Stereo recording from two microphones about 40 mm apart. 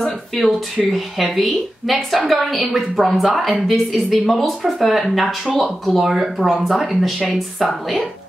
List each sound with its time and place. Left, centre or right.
0.0 s speech: centre